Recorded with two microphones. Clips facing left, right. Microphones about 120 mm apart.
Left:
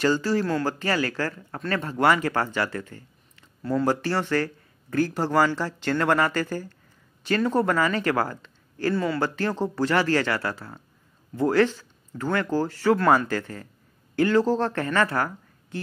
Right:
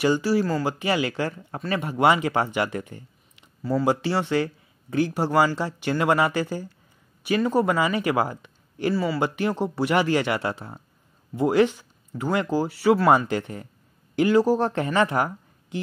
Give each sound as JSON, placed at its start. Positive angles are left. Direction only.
{"t": 0.0, "sound": "speech", "side_deg": -10}
{"t": 0.7, "sound": "speech", "side_deg": -15}
{"t": 8.9, "sound": "speech", "side_deg": -5}
{"t": 9.2, "sound": "speech", "side_deg": -15}
{"t": 13.3, "sound": "speech", "side_deg": -20}